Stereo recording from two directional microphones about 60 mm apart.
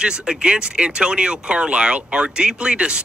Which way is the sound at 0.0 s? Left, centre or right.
Centre.